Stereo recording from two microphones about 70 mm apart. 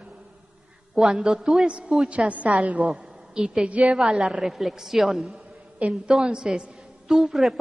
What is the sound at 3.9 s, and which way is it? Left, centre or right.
A woman's voice, centre.